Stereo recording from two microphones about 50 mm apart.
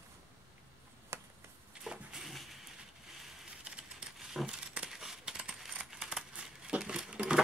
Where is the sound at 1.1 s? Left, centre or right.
Right.